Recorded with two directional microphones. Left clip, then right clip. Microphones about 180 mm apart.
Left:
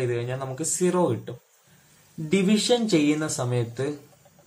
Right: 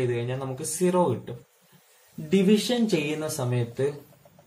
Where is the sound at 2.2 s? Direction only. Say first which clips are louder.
Left 1 dB; 45° left (ahead or behind).